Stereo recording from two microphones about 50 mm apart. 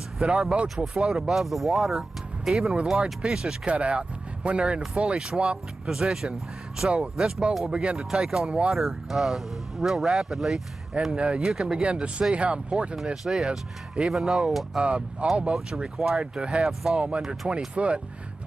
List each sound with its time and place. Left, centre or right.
0.2 s speech: centre
3.6 s speech: right
4.9 s speech: centre
11.1 s speech: centre
12.9 s speech: centre
14.8 s speech: right
15.5 s speech: centre
17.7 s speech: right